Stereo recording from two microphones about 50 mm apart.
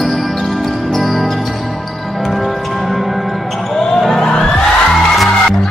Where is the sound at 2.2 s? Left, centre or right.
Centre.